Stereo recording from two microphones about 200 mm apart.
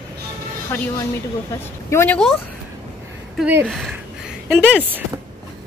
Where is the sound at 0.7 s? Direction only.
10° left (ahead or behind).